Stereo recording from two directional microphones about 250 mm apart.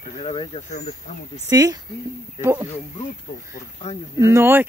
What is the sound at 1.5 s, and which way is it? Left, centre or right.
Speech, centre.